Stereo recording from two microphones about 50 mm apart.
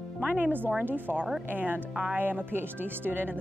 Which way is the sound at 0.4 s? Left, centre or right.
Right.